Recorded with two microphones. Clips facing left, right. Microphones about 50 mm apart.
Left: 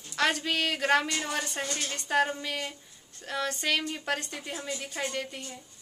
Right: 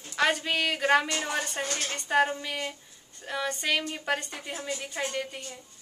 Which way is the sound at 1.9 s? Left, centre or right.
Centre.